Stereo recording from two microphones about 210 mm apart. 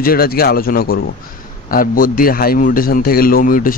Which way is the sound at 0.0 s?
45° left (ahead or behind).